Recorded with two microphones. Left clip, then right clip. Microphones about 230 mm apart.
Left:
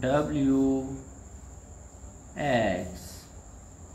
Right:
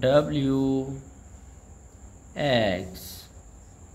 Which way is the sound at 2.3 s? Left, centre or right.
Right.